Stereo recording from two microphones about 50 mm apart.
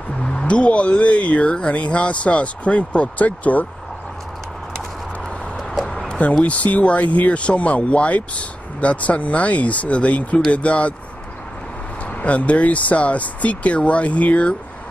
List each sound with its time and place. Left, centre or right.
0.2 s speech: centre; by 3.6 s left
6.0 s a sound: left
6.4 s speech: left
12.2 s speech: left